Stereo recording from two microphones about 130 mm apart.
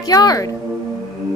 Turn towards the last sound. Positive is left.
turn(degrees=30)  # may be behind; listen again after turning